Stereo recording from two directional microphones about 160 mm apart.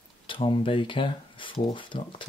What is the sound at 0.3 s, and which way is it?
Speech, 30° left (ahead or behind).